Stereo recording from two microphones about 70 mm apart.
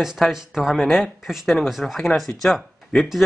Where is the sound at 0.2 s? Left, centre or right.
Centre.